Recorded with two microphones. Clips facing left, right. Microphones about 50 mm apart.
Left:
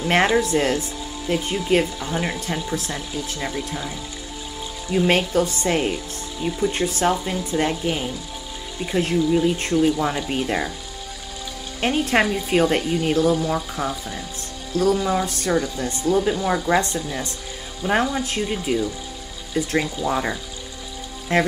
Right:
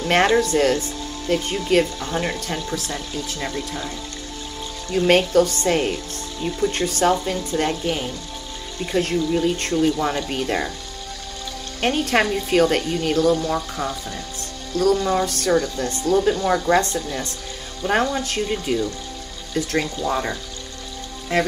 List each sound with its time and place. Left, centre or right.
0.0 s speech: centre
11.8 s speech: centre
14.7 s speech: left
15.0 s speech: centre